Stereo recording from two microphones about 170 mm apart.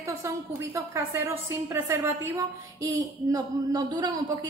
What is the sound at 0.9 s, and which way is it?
A woman's voice, 15° right (ahead or behind).